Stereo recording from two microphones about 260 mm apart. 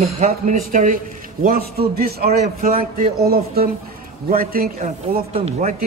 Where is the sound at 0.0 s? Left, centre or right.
Right.